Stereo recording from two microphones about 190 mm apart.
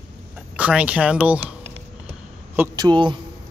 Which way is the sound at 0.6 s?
5° right (ahead or behind).